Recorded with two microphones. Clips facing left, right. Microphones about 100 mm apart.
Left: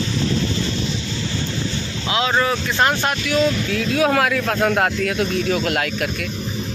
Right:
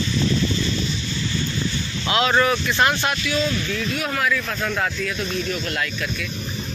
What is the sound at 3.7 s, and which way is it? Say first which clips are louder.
Speech: left 7 dB; 90° left.